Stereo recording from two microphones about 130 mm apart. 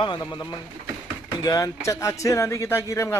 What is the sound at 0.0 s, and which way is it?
A man's voice, 35° left (ahead or behind).